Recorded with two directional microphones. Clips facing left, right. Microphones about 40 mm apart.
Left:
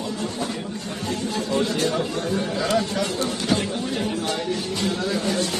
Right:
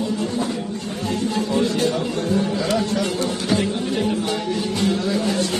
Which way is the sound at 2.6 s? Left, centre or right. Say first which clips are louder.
Right 1 dB; centre.